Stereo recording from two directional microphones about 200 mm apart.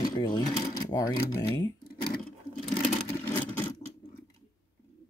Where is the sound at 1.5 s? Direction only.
20° left (ahead or behind).